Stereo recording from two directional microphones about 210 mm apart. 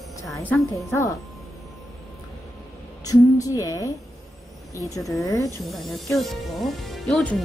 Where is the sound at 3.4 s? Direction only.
15° left (ahead or behind).